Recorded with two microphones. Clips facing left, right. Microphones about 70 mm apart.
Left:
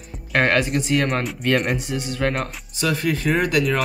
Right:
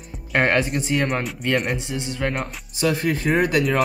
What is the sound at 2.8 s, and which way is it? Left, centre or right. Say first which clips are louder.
Speech: even; right.